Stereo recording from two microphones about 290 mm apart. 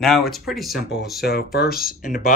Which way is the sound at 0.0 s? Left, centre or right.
Centre.